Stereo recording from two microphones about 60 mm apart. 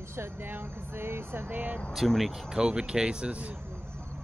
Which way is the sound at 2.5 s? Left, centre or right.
Centre.